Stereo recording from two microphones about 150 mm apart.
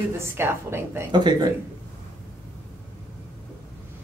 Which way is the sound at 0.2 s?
15° right (ahead or behind).